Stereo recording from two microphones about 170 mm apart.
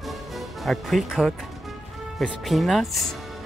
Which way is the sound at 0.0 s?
Centre (ahead or behind).